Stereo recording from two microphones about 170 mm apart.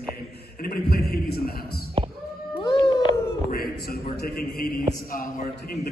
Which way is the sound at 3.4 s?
60° left (ahead or behind).